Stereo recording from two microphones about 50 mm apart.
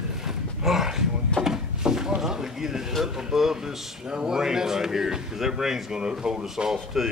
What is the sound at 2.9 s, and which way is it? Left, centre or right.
Speech, centre.